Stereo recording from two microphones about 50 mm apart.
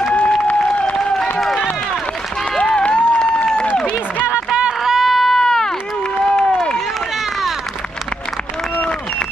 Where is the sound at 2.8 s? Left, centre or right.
Left.